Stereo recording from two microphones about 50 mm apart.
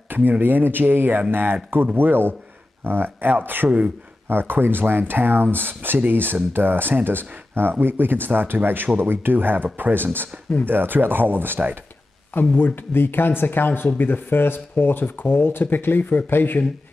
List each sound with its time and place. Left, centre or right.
0.1 s speech: right
12.4 s speech: left